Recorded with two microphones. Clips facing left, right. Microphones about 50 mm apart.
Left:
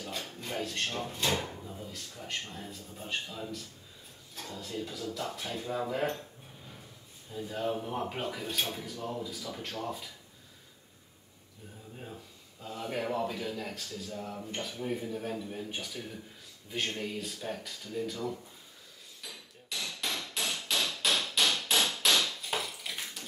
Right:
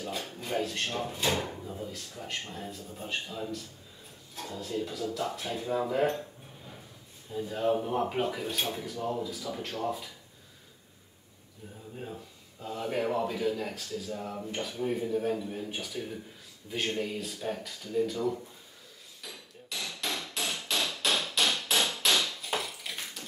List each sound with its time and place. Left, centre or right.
0.0 s speech: centre
7.2 s speech: centre
12.0 s speech: centre
19.2 s hammer: centre